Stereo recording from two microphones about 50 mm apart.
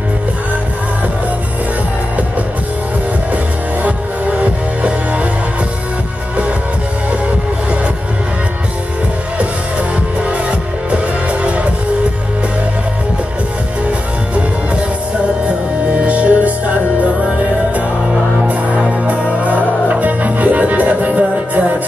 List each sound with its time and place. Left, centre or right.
3.8 s music: right
10.9 s music: right
16.0 s music: right
18.8 s music: right